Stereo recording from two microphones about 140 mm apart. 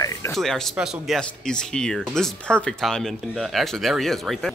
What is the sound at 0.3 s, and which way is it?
Speech, centre (ahead or behind).